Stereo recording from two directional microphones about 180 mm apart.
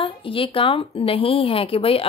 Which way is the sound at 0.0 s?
30° left (ahead or behind).